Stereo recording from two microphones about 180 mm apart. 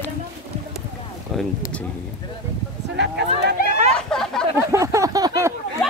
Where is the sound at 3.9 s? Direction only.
5° left (ahead or behind).